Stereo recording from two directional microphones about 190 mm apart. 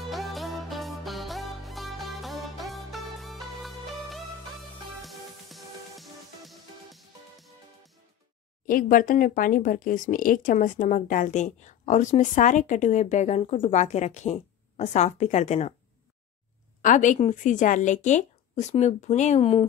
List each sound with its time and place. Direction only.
0.1 s music: centre (ahead or behind)
8.6 s speech: 45° left (ahead or behind)
16.8 s speech: 40° left (ahead or behind)